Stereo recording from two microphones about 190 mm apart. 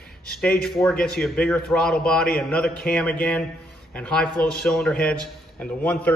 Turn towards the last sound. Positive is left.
turn(degrees=5)  # may be behind; listen again after turning